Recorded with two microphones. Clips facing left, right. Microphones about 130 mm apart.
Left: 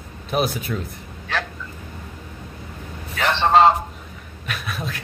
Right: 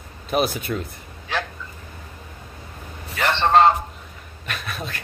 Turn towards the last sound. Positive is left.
turn(degrees=0)  # may be behind; listen again after turning